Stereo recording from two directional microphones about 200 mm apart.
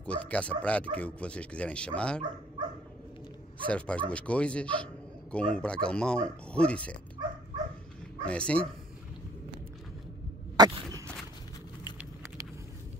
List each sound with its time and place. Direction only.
0.0 s speech: 5° left (ahead or behind)
2.6 s dog: 20° right (ahead or behind)
3.6 s speech: 5° left (ahead or behind)
8.3 s speech: 5° left (ahead or behind)
10.6 s a sound: 20° right (ahead or behind)